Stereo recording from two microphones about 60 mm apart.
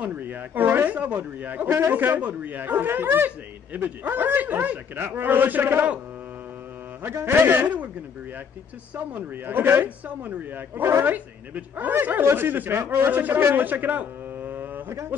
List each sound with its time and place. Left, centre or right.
0.0 s a man's voice: right
7.0 s a man's voice: right
8.9 s a man's voice: right
13.4 s speech: right
13.7 s a sound: right